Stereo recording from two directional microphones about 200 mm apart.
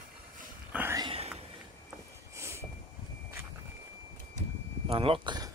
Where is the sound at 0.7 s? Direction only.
10° right (ahead or behind).